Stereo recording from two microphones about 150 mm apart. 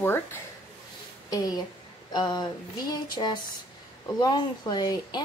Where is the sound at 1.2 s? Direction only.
25° left (ahead or behind).